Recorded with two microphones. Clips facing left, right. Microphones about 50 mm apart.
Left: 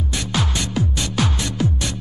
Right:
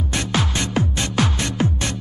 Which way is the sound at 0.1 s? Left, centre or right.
Right.